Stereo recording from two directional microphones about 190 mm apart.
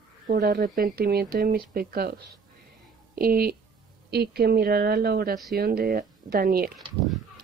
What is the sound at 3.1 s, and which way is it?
A woman's voice, 50° right (ahead or behind).